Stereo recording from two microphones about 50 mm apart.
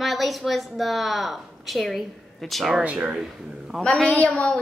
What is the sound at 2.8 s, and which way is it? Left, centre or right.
Speech, right.